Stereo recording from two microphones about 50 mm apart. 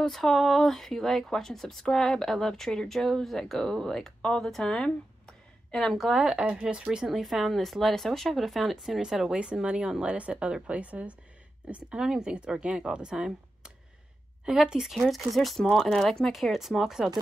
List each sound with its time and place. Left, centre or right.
0.0 s a woman's voice: centre
6.1 s a woman's voice: centre
9.3 s a woman's voice: centre
10.1 s a woman's voice: right
11.7 s a woman's voice: centre